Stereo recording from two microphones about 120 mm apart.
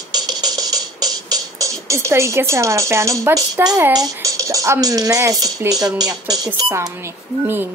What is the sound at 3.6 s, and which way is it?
Speech, 20° right (ahead or behind).